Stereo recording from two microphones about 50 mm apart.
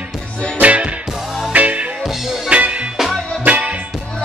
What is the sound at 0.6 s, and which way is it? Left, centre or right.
Music, right.